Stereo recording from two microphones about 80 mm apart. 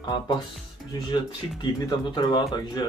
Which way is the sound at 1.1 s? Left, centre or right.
Left.